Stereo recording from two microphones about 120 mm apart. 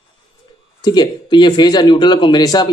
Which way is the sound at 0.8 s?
35° left (ahead or behind).